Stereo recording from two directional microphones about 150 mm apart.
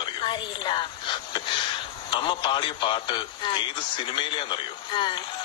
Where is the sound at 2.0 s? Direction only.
30° left (ahead or behind).